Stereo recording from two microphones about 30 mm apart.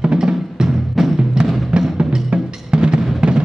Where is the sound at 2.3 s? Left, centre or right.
Right.